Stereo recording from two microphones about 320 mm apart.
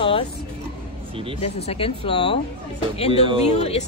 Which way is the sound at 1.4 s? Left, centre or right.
Centre.